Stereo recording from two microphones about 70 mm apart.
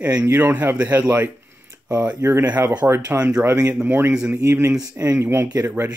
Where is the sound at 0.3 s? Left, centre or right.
Right.